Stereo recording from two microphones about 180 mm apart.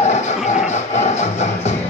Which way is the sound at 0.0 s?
40° left (ahead or behind).